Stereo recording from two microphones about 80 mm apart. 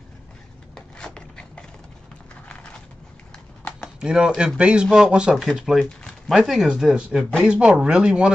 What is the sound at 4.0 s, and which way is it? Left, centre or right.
Speech, centre.